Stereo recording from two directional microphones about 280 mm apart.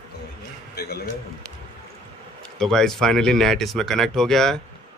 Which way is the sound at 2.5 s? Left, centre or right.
Centre.